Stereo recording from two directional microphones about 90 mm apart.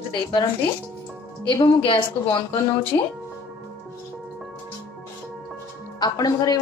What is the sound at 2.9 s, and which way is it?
Speech, 45° left (ahead or behind).